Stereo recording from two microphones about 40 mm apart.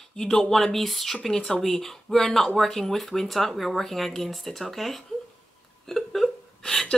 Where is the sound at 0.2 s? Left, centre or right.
Centre.